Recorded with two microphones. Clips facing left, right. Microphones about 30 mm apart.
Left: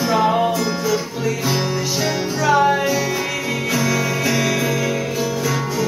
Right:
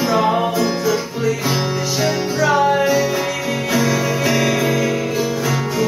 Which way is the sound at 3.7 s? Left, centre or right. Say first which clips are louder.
Right 3 dB; centre.